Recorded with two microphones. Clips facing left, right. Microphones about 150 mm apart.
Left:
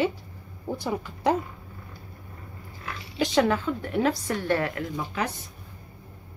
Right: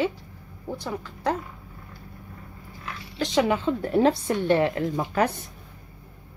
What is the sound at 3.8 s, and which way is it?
A woman's voice, 35° right (ahead or behind).